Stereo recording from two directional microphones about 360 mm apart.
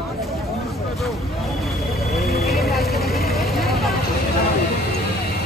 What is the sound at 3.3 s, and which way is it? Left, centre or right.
Vehicle, centre.